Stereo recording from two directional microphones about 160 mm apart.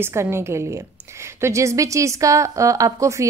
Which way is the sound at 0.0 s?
15° right (ahead or behind).